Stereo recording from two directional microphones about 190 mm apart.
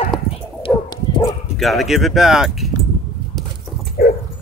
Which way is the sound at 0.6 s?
20° left (ahead or behind).